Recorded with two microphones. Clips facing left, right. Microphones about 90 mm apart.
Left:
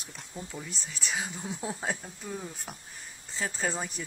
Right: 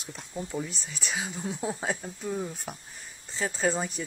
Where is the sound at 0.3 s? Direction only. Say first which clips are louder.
Right 8 dB; 15° right (ahead or behind).